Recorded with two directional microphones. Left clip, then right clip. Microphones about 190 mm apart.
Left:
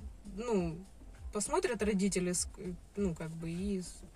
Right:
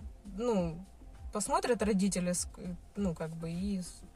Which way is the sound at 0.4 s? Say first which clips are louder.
Right 2 dB; 15° right (ahead or behind).